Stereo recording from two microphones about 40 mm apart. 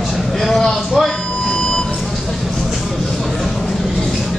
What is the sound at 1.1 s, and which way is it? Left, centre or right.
Vehicle, centre.